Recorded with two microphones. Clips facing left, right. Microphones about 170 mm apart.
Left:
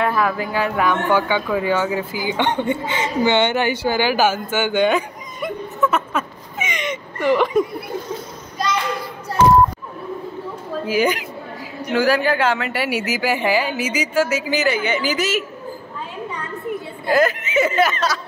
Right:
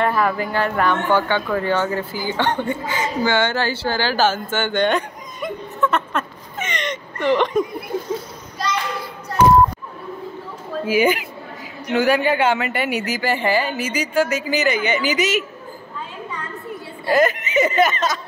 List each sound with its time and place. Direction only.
0.0 s speech: centre (ahead or behind)
10.9 s speech: 5° right (ahead or behind)
17.1 s speech: centre (ahead or behind)